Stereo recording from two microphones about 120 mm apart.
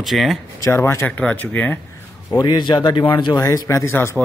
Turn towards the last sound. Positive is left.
turn(degrees=20)  # may be behind; listen again after turning